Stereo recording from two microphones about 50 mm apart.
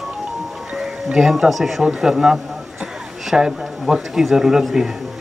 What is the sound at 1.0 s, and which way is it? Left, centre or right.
A man's voice, centre.